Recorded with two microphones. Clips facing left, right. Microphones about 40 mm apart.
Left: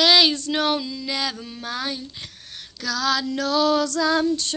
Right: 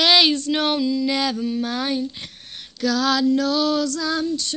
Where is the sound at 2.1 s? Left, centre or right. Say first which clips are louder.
Right 1 dB; right.